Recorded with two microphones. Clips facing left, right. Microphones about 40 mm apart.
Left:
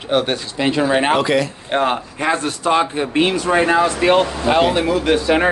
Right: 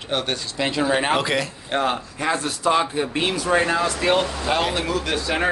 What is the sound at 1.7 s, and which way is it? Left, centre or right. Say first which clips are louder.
Speech: left 2 dB; left.